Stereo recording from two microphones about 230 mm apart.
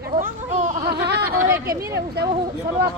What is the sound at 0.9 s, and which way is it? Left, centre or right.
Speech, right.